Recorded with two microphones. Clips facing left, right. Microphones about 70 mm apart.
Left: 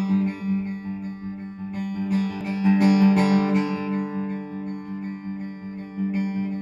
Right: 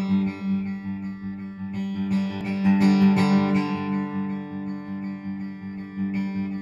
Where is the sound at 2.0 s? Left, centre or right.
Centre.